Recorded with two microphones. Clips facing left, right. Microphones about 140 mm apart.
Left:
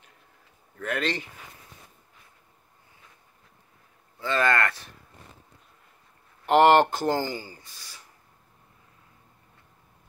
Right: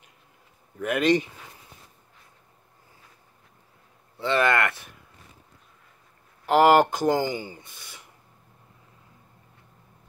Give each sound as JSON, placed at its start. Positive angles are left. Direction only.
{"t": 0.7, "sound": "speech", "side_deg": -15}
{"t": 4.2, "sound": "speech", "side_deg": -20}
{"t": 6.4, "sound": "speech", "side_deg": -5}